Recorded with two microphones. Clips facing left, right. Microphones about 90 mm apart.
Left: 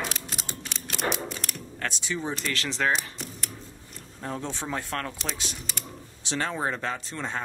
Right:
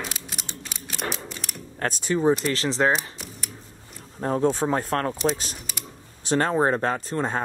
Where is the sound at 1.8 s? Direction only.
45° right (ahead or behind).